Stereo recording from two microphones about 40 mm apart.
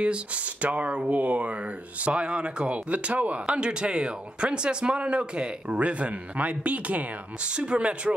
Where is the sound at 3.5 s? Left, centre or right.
Right.